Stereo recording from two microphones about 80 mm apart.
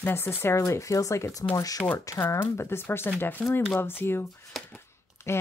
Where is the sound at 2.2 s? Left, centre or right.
Left.